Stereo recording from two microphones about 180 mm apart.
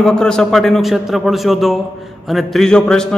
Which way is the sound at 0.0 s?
5° left (ahead or behind).